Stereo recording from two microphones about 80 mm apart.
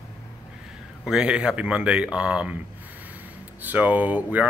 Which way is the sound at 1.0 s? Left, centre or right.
Centre.